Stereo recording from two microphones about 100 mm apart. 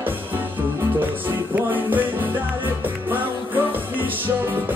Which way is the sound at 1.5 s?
20° right (ahead or behind).